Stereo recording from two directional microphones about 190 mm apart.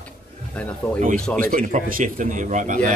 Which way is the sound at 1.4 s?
45° right (ahead or behind).